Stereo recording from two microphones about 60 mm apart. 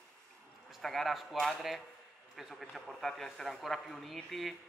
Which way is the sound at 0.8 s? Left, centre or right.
Centre.